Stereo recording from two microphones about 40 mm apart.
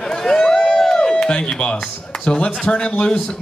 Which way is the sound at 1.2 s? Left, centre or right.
Left.